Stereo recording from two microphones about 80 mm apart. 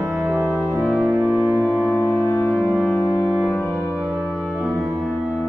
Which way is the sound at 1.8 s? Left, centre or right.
Left.